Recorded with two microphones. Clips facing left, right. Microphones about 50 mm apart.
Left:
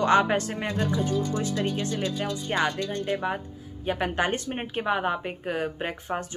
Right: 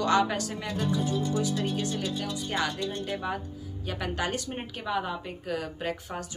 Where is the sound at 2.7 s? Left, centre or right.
Left.